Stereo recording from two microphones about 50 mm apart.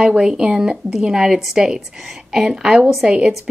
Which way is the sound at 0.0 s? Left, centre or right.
Centre.